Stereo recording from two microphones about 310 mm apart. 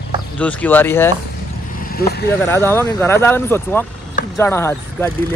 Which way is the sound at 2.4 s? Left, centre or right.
Centre.